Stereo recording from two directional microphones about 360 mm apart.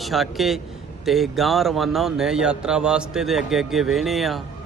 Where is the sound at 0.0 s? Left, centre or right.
Centre.